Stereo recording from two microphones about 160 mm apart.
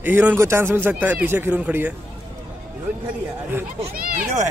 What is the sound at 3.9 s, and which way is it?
Speech, 60° right (ahead or behind).